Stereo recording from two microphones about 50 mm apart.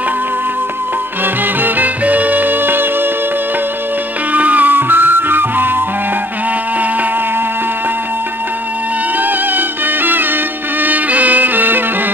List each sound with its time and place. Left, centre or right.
1.2 s music: right
4.3 s music: right
9.2 s music: right